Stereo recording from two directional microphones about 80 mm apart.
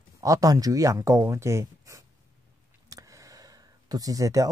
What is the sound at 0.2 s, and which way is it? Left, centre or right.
Speech, right.